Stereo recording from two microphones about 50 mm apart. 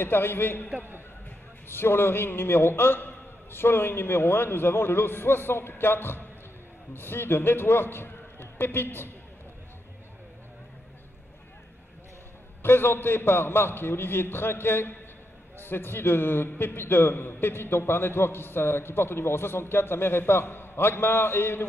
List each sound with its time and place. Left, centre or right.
0.0 s a man's voice: left
0.7 s a man's voice: right
1.7 s a man's voice: left
12.6 s a man's voice: left